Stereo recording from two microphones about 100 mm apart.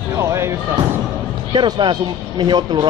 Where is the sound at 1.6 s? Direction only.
50° right (ahead or behind).